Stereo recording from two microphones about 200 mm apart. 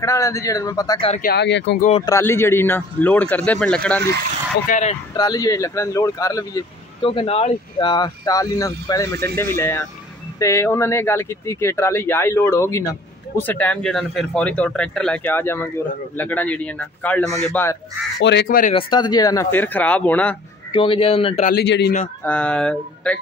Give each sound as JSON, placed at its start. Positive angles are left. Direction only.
{"t": 0.0, "sound": "speech", "side_deg": 15}
{"t": 1.2, "sound": "speech", "side_deg": 55}
{"t": 1.8, "sound": "speech", "side_deg": 30}
{"t": 2.0, "sound": "speech", "side_deg": 15}
{"t": 4.6, "sound": "speech", "side_deg": 35}
{"t": 5.1, "sound": "speech", "side_deg": 20}
{"t": 18.2, "sound": "speech", "side_deg": 60}
{"t": 18.8, "sound": "speech", "side_deg": 20}
{"t": 20.7, "sound": "speech", "side_deg": 25}
{"t": 21.5, "sound": "speech", "side_deg": 55}
{"t": 22.2, "sound": "speech", "side_deg": 5}